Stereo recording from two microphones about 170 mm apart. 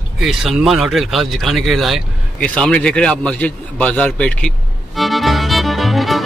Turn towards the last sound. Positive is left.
turn(degrees=0)  # may be behind; listen again after turning